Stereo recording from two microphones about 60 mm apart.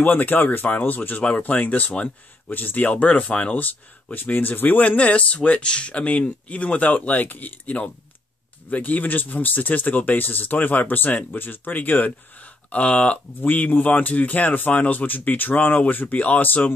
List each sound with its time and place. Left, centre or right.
0.0 s speech: left
12.7 s speech: centre